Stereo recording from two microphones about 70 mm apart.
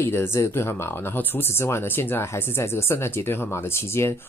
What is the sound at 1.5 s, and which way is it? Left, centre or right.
Speech, left.